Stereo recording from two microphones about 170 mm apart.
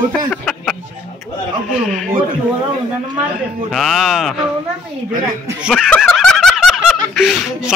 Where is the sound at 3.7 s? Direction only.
Centre (ahead or behind).